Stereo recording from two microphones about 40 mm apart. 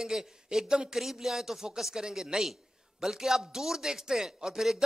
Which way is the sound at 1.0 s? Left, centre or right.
Centre.